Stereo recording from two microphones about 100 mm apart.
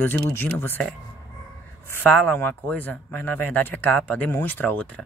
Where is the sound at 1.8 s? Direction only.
20° left (ahead or behind).